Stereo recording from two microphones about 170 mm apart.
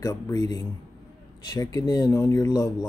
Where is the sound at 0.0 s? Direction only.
20° left (ahead or behind).